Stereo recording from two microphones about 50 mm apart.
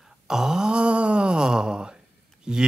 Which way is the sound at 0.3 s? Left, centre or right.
Centre.